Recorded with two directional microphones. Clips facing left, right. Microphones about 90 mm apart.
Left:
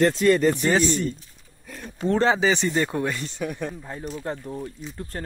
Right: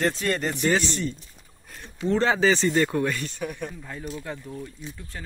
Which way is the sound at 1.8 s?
45° left (ahead or behind).